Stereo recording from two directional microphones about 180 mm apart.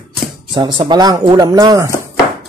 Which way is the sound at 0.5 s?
25° right (ahead or behind).